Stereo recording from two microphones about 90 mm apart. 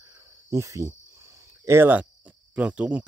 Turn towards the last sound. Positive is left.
turn(degrees=-15)  # may be behind; listen again after turning